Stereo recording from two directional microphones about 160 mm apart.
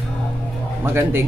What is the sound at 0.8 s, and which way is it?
Speech, 15° right (ahead or behind).